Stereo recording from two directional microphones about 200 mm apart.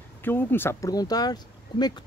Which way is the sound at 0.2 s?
10° left (ahead or behind).